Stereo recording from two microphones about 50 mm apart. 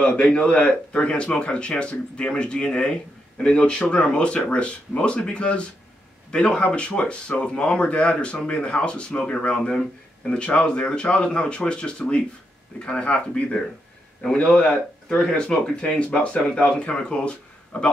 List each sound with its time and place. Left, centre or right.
0.0 s speech: centre